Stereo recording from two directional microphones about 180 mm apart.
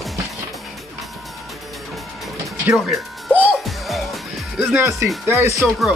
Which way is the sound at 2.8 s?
Centre (ahead or behind).